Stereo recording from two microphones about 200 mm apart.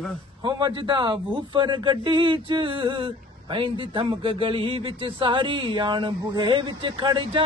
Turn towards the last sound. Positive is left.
turn(degrees=-25)  # may be behind; listen again after turning